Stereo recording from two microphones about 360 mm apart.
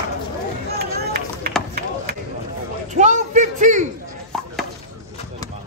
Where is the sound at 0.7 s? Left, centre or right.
Right.